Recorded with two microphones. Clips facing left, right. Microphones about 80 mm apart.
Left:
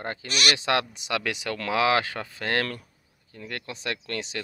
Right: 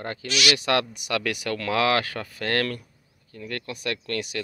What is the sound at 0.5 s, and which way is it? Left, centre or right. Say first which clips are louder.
Speech: right 2 dB; left.